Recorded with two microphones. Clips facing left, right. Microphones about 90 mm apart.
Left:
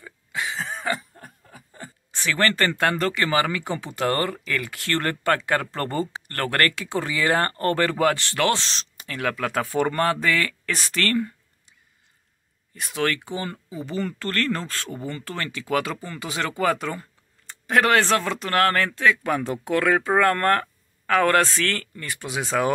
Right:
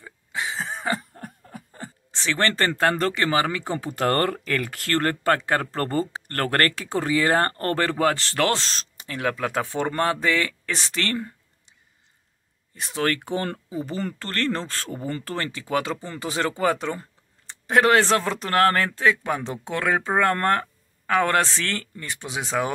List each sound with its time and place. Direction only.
0.0 s a sound: 25° right (ahead or behind)
1.1 s snicker: 55° right (ahead or behind)
1.7 s a sound: 35° right (ahead or behind)
2.2 s speech: 25° right (ahead or behind)
9.0 s speech: 25° right (ahead or behind)
12.7 s speech: 30° right (ahead or behind)
13.2 s speech: 60° right (ahead or behind)
13.7 s speech: 40° right (ahead or behind); by 22.7 s 20° right (ahead or behind)